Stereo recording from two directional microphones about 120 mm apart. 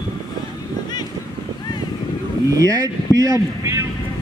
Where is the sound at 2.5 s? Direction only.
30° right (ahead or behind).